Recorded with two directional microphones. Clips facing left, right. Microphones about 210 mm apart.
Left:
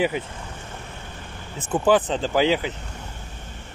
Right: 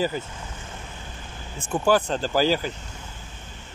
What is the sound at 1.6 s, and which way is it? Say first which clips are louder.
Speech: left 2 dB; 20° left (ahead or behind).